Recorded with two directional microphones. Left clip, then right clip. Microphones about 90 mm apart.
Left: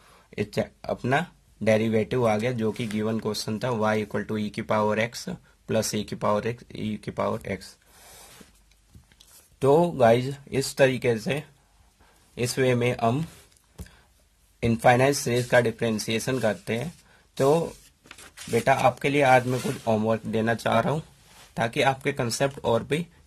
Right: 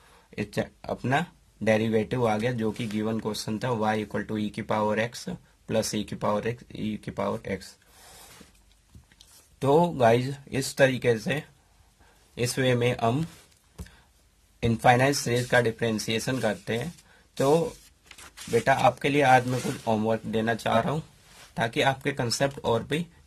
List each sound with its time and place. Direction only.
0.4 s speech: 30° left (ahead or behind)
9.8 s speech: 20° left (ahead or behind)
12.4 s speech: 5° left (ahead or behind)
14.6 s speech: 30° left (ahead or behind)
19.0 s speech: 25° left (ahead or behind); by 21.0 s 50° left (ahead or behind)
21.5 s speech: 30° left (ahead or behind)